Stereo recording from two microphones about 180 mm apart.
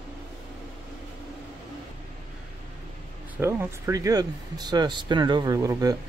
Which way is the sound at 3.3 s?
15° right (ahead or behind).